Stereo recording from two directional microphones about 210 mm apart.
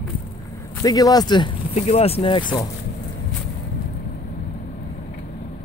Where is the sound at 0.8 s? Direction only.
15° left (ahead or behind).